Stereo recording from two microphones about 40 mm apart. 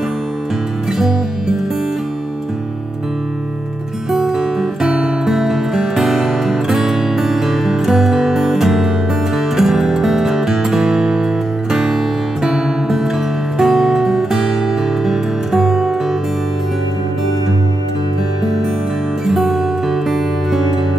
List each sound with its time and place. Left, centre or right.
0.9 s music: centre
4.1 s music: centre
19.2 s music: centre